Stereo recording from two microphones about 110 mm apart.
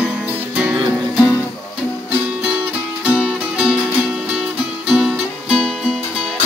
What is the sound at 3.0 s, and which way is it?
Music, 10° right (ahead or behind).